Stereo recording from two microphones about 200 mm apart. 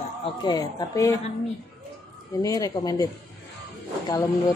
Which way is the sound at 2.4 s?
20° left (ahead or behind).